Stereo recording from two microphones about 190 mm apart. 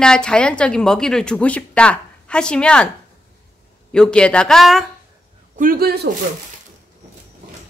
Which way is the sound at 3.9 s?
5° left (ahead or behind).